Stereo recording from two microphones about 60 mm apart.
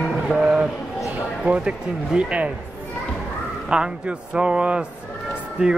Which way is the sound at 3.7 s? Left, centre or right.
Centre.